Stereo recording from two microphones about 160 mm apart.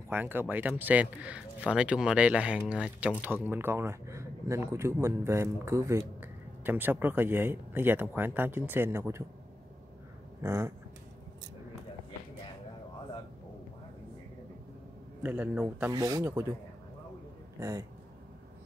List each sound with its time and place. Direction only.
0.1 s speech: 10° right (ahead or behind)
10.4 s speech: 15° right (ahead or behind)
15.2 s speech: 10° right (ahead or behind)
15.9 s speech: 25° right (ahead or behind)
17.6 s a man's voice: 20° right (ahead or behind)